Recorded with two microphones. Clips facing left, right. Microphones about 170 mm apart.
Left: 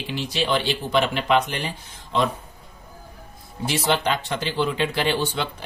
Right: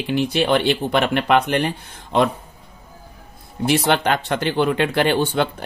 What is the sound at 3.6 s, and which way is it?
Speech, 60° right (ahead or behind).